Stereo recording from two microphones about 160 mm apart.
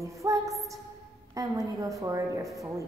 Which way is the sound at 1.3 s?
20° right (ahead or behind).